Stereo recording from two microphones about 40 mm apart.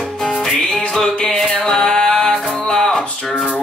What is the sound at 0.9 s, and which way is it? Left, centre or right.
Music, centre.